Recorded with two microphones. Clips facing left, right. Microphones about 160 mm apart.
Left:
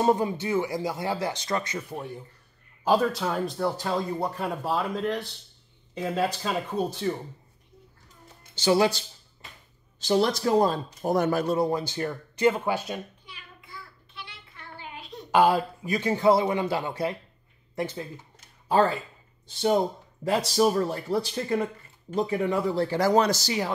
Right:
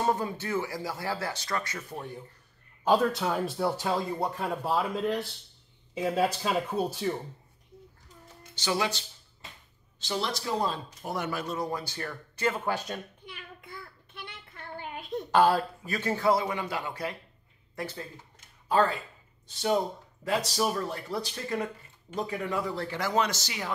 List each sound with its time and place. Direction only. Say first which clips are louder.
0.0 s speech: left 5 dB; 15° left (ahead or behind); by 7.1 s 5° right (ahead or behind)
8.5 s speech: left 8 dB; 30° left (ahead or behind)
11.5 s speech: left 8 dB; 25° left (ahead or behind); by 13.0 s 10° left (ahead or behind)
13.2 s child singing: right 4 dB; 55° right (ahead or behind)
15.3 s speech: left 2 dB; 10° left (ahead or behind)
16.3 s speech: left 6 dB; 25° left (ahead or behind)
19.4 s speech: left 4 dB; 30° left (ahead or behind)